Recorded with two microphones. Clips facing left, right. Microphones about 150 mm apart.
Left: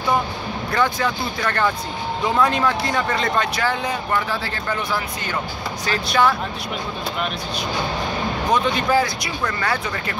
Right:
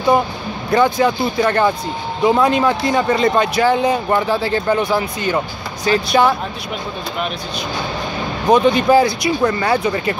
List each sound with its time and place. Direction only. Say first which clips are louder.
0.7 s speech: right 7 dB; 20° right (ahead or behind)
8.5 s speech: right 8 dB; 20° right (ahead or behind)